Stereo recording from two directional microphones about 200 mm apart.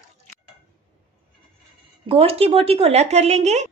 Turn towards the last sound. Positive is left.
turn(degrees=-35)  # may be behind; listen again after turning